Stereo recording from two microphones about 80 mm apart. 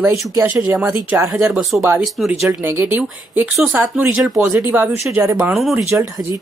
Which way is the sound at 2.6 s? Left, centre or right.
Right.